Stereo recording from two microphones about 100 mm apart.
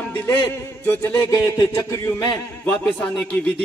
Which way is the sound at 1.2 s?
30° left (ahead or behind).